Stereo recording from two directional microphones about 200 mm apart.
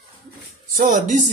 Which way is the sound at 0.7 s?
40° right (ahead or behind).